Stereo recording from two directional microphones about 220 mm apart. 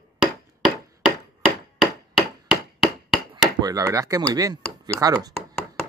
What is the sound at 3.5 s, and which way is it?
Speech, 15° right (ahead or behind).